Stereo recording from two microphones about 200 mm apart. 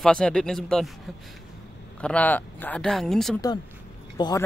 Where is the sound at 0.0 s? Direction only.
5° left (ahead or behind).